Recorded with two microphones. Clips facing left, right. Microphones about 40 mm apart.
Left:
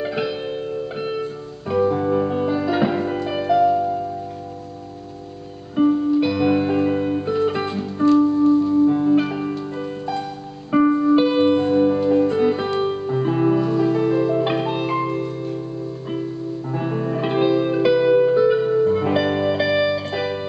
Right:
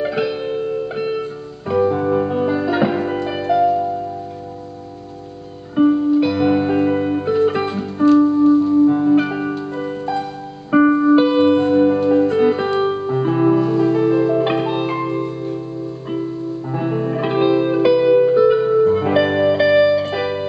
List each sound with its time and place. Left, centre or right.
0.0 s music: centre
5.8 s music: centre
10.7 s music: centre
11.1 s music: centre
16.7 s music: centre